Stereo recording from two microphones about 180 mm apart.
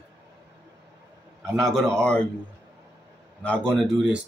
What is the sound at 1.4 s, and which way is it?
Speech, centre (ahead or behind).